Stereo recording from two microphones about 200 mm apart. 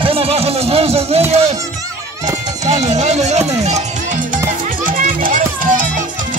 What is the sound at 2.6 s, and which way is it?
Music, 35° right (ahead or behind).